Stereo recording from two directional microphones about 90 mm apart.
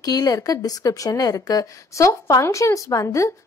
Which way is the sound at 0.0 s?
40° left (ahead or behind).